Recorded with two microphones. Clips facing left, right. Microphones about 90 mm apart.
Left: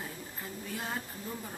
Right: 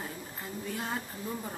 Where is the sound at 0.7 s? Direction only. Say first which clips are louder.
Right 2 dB; centre (ahead or behind).